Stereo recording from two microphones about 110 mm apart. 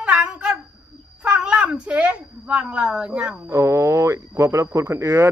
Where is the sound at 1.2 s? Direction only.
10° right (ahead or behind).